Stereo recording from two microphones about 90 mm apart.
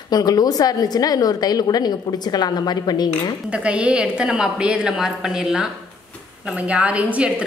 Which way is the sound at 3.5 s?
15° right (ahead or behind).